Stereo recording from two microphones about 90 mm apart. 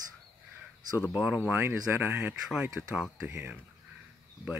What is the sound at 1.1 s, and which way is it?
Speech, 15° right (ahead or behind).